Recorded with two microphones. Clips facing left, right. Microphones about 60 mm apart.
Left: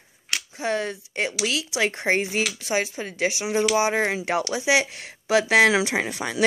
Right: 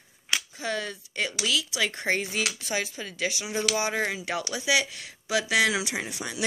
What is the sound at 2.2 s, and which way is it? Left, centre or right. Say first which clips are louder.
Speech: left 4 dB; left.